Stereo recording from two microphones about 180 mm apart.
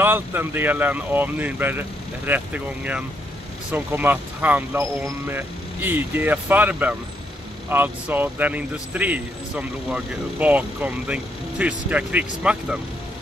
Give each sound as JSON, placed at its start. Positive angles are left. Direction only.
{"t": 0.0, "sound": "speech", "side_deg": -10}